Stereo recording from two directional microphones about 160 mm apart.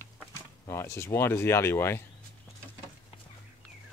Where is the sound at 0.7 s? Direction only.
15° left (ahead or behind).